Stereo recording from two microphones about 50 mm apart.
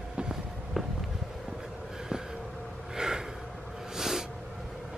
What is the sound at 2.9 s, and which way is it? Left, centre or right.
Gasp, centre.